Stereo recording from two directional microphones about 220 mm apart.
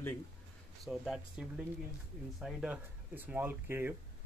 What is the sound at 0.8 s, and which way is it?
Speech, centre (ahead or behind).